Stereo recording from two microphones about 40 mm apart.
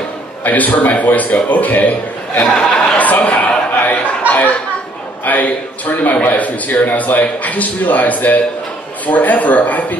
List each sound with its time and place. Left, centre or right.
0.4 s a man's voice: left
2.4 s speech: left
3.0 s a sound: left
5.2 s a man's voice: left